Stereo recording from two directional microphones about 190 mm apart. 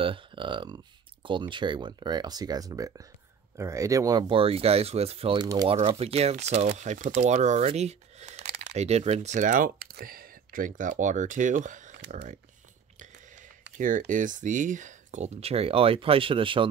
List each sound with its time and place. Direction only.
0.0 s speech: 25° right (ahead or behind)
5.8 s speech: 30° right (ahead or behind)
13.7 s speech: 45° right (ahead or behind); by 16.6 s 25° right (ahead or behind)